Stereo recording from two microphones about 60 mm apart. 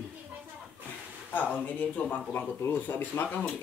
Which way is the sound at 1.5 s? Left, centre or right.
Left.